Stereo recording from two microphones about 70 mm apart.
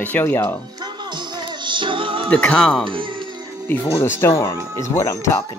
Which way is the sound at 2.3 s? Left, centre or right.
Centre.